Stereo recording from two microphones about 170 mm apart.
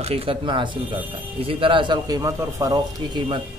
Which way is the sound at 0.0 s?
35° right (ahead or behind).